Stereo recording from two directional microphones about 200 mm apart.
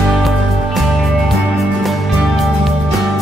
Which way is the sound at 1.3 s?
Centre (ahead or behind).